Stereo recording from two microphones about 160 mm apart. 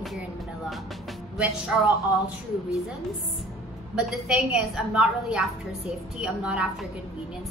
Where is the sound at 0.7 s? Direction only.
Centre (ahead or behind).